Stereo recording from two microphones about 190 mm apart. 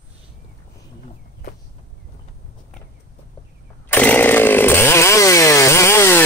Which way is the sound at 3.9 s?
10° left (ahead or behind).